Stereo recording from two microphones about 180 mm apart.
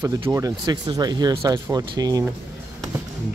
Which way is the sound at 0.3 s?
20° right (ahead or behind).